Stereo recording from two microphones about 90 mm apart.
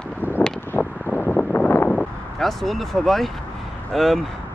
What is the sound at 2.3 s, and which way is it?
Speech, centre (ahead or behind).